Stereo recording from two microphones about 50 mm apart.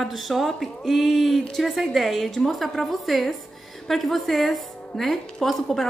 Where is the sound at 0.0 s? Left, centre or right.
Centre.